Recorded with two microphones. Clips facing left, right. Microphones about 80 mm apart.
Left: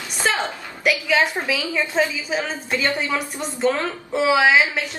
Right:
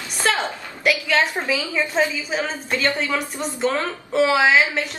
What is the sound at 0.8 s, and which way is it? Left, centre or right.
Speech, centre.